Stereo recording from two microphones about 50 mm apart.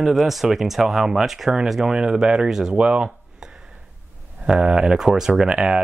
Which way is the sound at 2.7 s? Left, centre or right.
Right.